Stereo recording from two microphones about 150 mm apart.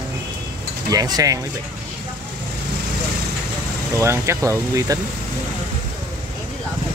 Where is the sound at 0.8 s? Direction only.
25° right (ahead or behind).